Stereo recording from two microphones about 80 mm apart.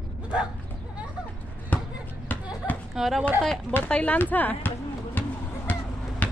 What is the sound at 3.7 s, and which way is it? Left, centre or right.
Speech, centre.